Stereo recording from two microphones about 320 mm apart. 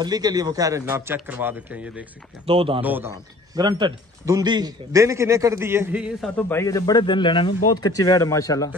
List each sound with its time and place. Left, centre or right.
0.0 s speech: centre
2.4 s speech: centre
2.8 s a man's voice: centre